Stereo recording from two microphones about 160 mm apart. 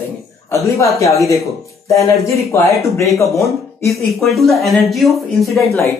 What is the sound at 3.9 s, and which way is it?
Speech, centre (ahead or behind).